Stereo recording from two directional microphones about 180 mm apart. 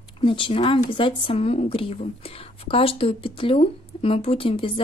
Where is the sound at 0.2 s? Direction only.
30° left (ahead or behind).